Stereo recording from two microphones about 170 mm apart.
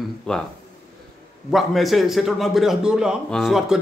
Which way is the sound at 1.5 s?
Centre (ahead or behind).